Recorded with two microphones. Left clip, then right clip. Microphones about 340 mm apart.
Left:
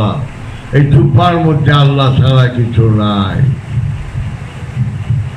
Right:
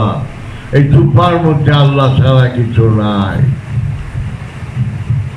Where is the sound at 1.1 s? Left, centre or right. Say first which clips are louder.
Even; centre.